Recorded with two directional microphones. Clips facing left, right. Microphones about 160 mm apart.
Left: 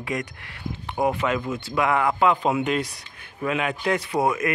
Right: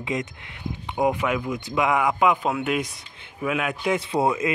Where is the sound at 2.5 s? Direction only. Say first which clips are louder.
Left 2 dB; centre (ahead or behind).